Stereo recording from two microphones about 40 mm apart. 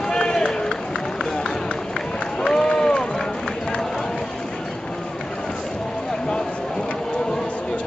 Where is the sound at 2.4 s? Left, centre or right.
Centre.